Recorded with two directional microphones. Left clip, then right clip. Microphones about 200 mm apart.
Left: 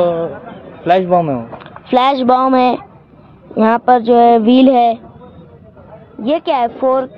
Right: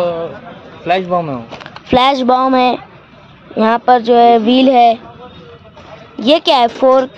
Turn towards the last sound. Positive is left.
turn(degrees=-30)  # may be behind; listen again after turning